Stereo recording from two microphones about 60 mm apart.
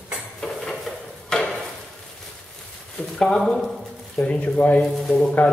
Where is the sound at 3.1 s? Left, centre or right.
Centre.